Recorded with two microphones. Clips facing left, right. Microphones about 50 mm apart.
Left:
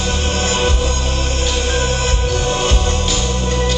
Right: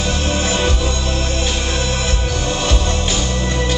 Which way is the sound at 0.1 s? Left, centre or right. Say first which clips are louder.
Left 1 dB; left.